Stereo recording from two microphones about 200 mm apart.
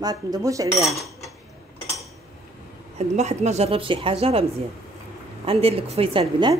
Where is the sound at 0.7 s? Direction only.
Centre (ahead or behind).